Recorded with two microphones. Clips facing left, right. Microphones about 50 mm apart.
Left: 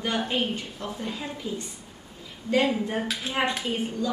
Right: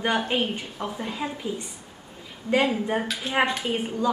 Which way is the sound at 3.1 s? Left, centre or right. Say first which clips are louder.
Right 3 dB; centre.